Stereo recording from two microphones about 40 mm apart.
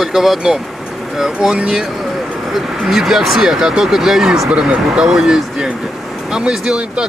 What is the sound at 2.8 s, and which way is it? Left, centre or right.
Speech, centre.